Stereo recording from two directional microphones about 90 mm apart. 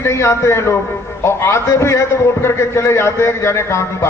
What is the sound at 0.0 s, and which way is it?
A man's voice, 30° left (ahead or behind).